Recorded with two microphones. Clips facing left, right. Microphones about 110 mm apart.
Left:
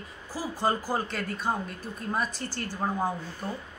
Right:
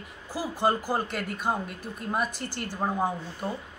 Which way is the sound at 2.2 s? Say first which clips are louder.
Even; 60° right (ahead or behind).